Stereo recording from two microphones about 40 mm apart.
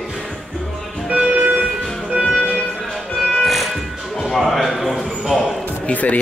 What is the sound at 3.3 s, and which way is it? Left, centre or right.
Music, centre.